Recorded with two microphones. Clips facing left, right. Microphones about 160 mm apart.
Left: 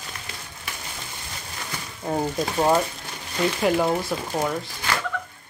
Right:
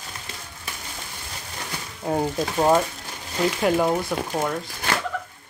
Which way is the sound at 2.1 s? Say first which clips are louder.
Right 1 dB; 5° right (ahead or behind).